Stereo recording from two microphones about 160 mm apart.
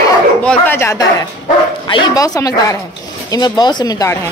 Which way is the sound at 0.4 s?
10° left (ahead or behind).